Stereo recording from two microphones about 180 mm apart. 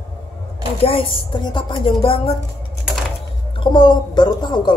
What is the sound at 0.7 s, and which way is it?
A woman's voice, 30° left (ahead or behind).